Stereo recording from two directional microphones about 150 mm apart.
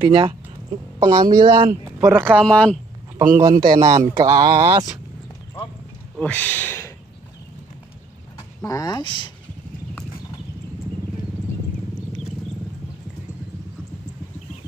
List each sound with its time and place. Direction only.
0.0 s speech: 35° right (ahead or behind)
1.9 s speech: 15° right (ahead or behind)
2.3 s speech: 5° left (ahead or behind)
3.5 s a man's voice: 65° right (ahead or behind)
3.8 s speech: 25° right (ahead or behind)
6.1 s speech: 10° left (ahead or behind)
8.6 s speech: 25° left (ahead or behind)